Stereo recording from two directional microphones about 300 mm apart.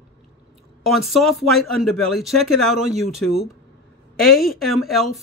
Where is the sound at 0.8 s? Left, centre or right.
Centre.